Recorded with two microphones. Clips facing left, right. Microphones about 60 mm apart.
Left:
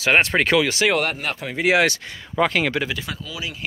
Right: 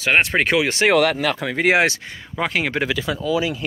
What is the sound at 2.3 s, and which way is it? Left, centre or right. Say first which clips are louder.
Speech: left 2 dB; centre.